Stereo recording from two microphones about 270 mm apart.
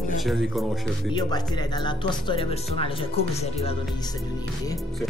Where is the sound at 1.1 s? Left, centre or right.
Centre.